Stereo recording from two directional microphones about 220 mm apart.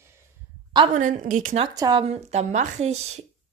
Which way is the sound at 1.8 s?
20° right (ahead or behind).